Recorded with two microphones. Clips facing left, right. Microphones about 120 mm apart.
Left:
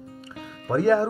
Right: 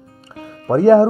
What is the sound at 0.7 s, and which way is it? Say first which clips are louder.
Speech: right 9 dB; 30° right (ahead or behind).